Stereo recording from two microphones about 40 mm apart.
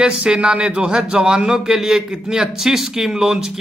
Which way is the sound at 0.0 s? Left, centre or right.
Right.